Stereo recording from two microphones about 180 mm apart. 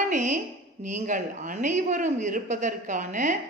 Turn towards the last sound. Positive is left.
turn(degrees=-45)  # may be behind; listen again after turning